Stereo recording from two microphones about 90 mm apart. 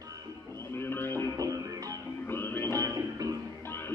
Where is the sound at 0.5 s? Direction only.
25° left (ahead or behind).